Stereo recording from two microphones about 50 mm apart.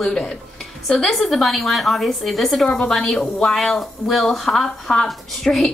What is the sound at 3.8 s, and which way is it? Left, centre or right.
A woman's voice, centre.